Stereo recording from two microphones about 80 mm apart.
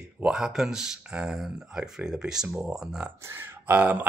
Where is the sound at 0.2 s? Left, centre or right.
Centre.